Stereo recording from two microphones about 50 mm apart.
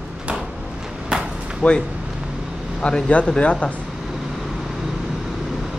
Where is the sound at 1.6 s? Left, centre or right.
Left.